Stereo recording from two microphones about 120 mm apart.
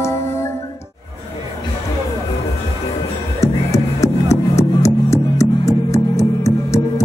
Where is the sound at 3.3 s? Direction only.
25° left (ahead or behind).